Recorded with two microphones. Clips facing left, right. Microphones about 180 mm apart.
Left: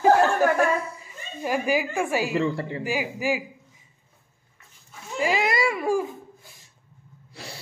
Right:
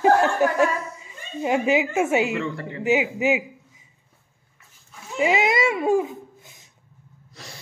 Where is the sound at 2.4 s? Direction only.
30° left (ahead or behind).